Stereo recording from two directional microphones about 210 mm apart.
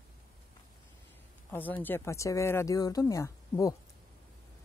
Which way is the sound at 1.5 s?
10° left (ahead or behind).